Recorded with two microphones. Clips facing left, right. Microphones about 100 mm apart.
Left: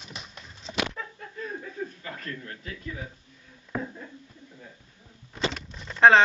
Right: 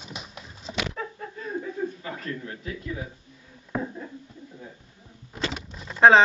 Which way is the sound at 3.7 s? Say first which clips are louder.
Right 3 dB; 15° right (ahead or behind).